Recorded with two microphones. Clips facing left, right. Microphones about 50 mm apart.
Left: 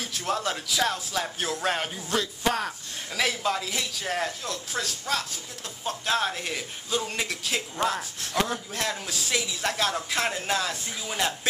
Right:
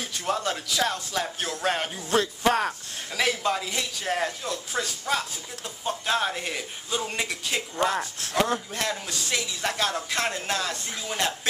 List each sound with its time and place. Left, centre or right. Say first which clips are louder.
0.0 s speech: right 1 dB; centre
2.0 s speech: right 5 dB; right
3.1 s speech: right 1 dB; centre